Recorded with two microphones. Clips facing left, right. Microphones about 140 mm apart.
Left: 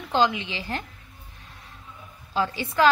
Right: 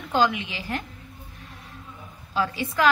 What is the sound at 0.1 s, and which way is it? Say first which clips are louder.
Speech: even; 25° left (ahead or behind).